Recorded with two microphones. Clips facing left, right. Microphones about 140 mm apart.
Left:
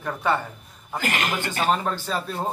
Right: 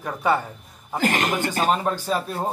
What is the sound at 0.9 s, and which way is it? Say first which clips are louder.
Speech: right 4 dB; 35° right (ahead or behind).